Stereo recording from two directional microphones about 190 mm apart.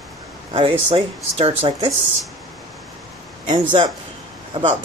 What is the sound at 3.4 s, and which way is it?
Speech, 25° right (ahead or behind).